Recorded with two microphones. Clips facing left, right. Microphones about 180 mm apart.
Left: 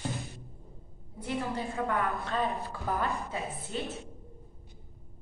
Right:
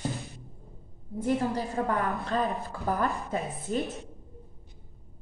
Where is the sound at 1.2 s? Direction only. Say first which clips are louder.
Right 6 dB; 45° right (ahead or behind).